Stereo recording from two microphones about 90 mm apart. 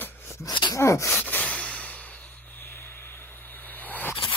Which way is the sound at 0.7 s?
35° left (ahead or behind).